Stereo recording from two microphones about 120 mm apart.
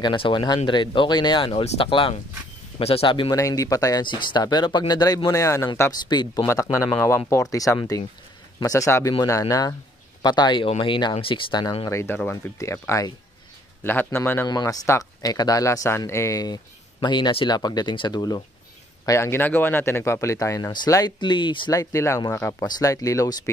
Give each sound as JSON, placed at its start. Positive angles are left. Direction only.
{"t": 0.0, "sound": "speech", "side_deg": 40}
{"t": 3.3, "sound": "speech", "side_deg": 25}
{"t": 4.0, "sound": "speech", "side_deg": 40}
{"t": 11.9, "sound": "a man's voice", "side_deg": 25}
{"t": 14.5, "sound": "speech", "side_deg": 35}
{"t": 19.0, "sound": "speech", "side_deg": 25}
{"t": 21.7, "sound": "speech", "side_deg": 25}